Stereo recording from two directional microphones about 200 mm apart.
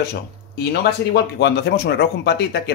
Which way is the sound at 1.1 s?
55° left (ahead or behind).